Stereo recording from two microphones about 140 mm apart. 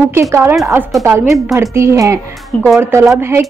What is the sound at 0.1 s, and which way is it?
A woman's voice, 20° right (ahead or behind).